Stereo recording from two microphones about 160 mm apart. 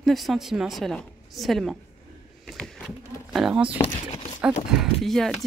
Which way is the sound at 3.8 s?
40° left (ahead or behind).